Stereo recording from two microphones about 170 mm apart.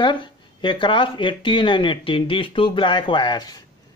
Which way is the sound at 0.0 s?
30° left (ahead or behind).